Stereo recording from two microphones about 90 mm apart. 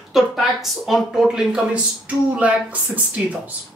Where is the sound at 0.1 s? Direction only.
Centre (ahead or behind).